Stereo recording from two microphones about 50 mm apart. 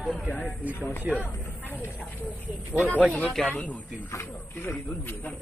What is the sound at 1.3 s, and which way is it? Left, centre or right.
Speech, left.